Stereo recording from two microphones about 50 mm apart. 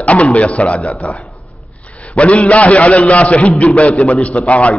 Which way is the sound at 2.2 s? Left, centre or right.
Left.